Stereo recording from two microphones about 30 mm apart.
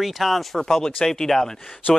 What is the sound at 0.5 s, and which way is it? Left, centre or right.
Speech, centre.